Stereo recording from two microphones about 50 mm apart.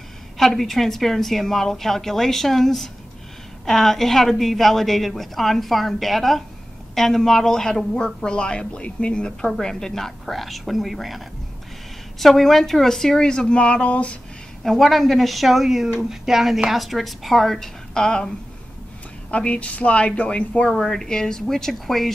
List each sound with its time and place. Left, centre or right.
0.4 s a woman's voice: centre; by 14.1 s left
14.6 s a woman's voice: centre
17.9 s speech: centre
19.3 s a woman's voice: left
20.7 s speech: centre